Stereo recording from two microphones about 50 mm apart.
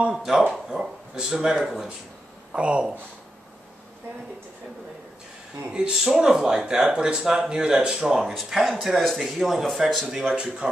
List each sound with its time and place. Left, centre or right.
0.1 s speech: centre
2.5 s speech: right
5.7 s speech: centre
10.1 s speech: centre